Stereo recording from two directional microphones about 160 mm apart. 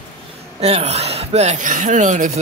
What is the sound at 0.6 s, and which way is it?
Speech, 40° right (ahead or behind).